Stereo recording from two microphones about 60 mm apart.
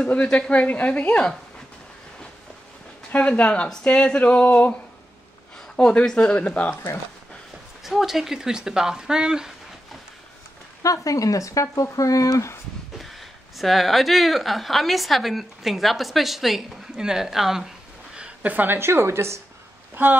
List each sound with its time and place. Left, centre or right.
0.1 s a woman's voice: centre
3.1 s a woman's voice: left
5.8 s a woman's voice: centre
7.8 s speech: centre
10.8 s speech: left
13.6 s a woman's voice: centre
18.4 s a woman's voice: right
20.0 s speech: right